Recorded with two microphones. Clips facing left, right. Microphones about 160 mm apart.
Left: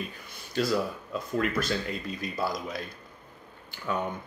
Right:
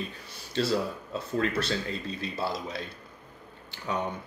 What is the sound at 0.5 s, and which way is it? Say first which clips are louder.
Speech: even; 30° right (ahead or behind).